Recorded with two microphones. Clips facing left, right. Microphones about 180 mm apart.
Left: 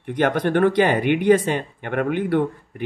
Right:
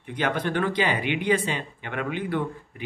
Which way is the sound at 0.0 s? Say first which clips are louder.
Left 7 dB; 50° left (ahead or behind).